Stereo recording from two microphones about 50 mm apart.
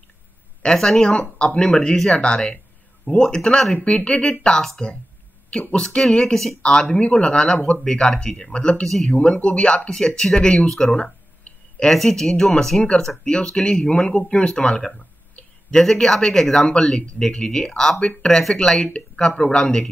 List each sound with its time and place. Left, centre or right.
0.7 s speech: centre
2.1 s speech: centre
6.1 s speech: centre
6.6 s speech: centre
8.8 s speech: centre
9.2 s speech: left
9.8 s speech: centre
11.5 s a sound: left
11.8 s speech: centre
12.8 s speech: left